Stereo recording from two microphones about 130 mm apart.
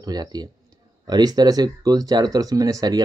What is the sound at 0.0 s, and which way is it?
Speech, 30° right (ahead or behind).